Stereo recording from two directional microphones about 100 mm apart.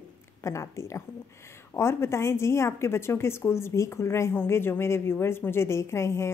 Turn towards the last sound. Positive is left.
turn(degrees=25)  # may be behind; listen again after turning